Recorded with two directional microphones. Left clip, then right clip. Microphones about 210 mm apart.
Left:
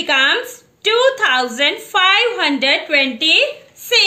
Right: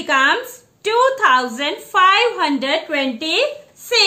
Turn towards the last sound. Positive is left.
turn(degrees=-10)  # may be behind; listen again after turning